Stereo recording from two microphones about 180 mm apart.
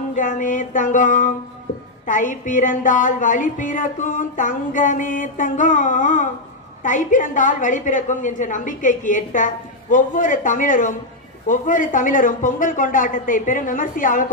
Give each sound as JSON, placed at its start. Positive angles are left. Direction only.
{"t": 0.1, "sound": "a woman's voice", "side_deg": 45}